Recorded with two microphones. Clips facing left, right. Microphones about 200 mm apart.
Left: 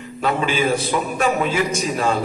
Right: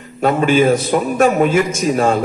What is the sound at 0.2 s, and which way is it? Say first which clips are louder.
A man's voice: right 7 dB; 45° right (ahead or behind).